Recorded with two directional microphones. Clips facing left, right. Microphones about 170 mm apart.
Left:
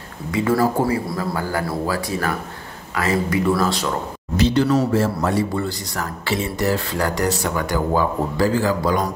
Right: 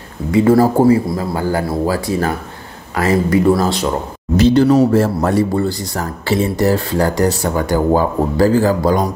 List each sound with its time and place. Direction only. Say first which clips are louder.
0.3 s speech: right 7 dB; 30° right (ahead or behind)
1.0 s a man's voice: right 5 dB; 20° right (ahead or behind); by 4.7 s 35° right (ahead or behind)
4.9 s speech: right 5 dB; 45° right (ahead or behind)